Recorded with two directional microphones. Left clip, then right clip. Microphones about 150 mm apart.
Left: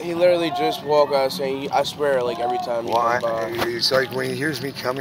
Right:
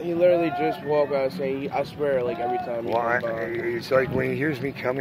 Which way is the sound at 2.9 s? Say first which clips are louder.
Left 4 dB; 15° right (ahead or behind).